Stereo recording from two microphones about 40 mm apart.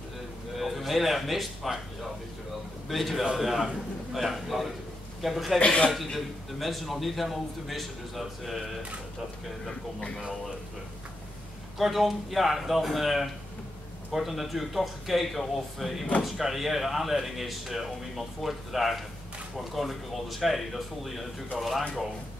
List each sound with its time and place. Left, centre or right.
0.6 s speech: centre
2.9 s speech: centre
5.6 s a man's voice: left
6.1 s speech: centre
11.8 s speech: centre